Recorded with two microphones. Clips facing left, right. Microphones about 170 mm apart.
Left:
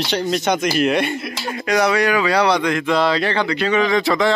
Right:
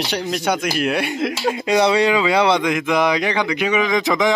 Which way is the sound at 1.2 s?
90° right.